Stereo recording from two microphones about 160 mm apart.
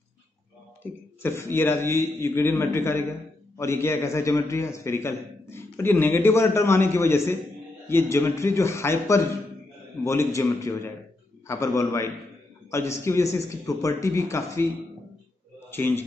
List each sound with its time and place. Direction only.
1.2 s a man's voice: 15° left (ahead or behind)
15.7 s a man's voice: 15° left (ahead or behind)